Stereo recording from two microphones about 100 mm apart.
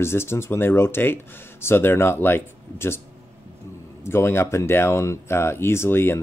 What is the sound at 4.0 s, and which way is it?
Speech, 25° left (ahead or behind).